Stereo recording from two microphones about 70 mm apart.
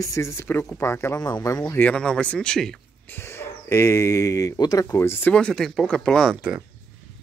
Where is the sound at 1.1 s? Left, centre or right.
Left.